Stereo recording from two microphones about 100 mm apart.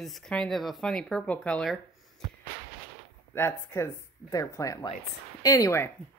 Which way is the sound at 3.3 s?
25° left (ahead or behind).